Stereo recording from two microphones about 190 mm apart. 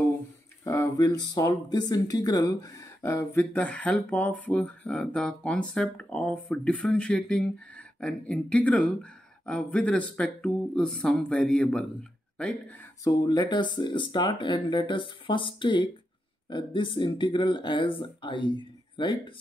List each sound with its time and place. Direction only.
0.7 s speech: 15° left (ahead or behind)
13.0 s speech: 20° left (ahead or behind)